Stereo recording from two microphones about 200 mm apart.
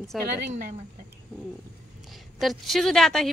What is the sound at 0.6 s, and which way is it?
Speech, 40° right (ahead or behind).